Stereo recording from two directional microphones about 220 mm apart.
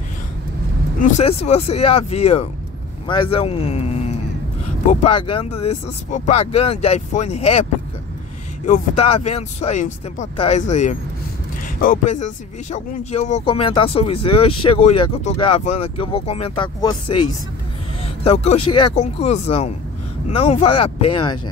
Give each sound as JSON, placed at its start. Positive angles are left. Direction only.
{"t": 1.0, "sound": "speech", "side_deg": 30}
{"t": 4.8, "sound": "speech", "side_deg": 25}
{"t": 8.6, "sound": "speech", "side_deg": 30}